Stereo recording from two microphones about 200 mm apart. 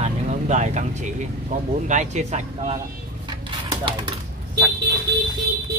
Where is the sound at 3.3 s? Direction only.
25° right (ahead or behind).